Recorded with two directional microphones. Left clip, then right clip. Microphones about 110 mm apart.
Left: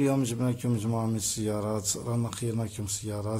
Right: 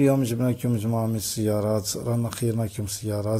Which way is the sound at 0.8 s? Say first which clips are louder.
Right 5 dB; 15° right (ahead or behind).